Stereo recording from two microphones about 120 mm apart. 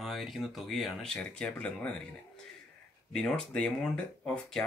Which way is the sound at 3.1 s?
5° left (ahead or behind).